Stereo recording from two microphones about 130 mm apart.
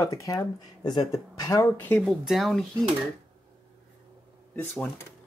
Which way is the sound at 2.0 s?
Centre (ahead or behind).